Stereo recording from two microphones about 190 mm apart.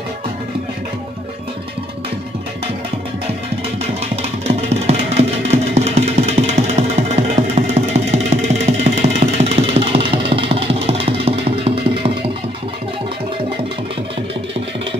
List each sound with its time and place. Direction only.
4.5 s music: 35° right (ahead or behind)